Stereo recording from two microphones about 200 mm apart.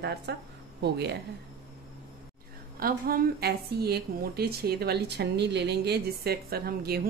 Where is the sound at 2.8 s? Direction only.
50° right (ahead or behind).